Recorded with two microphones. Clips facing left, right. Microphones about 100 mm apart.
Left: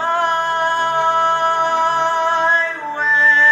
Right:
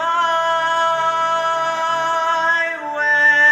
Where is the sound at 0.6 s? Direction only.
35° left (ahead or behind).